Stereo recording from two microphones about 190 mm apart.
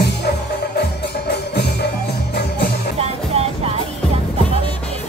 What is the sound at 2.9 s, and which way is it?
Music, 30° right (ahead or behind).